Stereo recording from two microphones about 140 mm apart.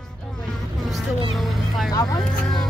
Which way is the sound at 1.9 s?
25° left (ahead or behind).